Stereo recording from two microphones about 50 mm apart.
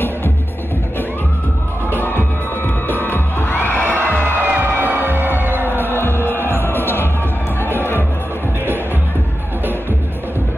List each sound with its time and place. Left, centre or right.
2.0 s music: left
4.4 s music: right
5.9 s music: left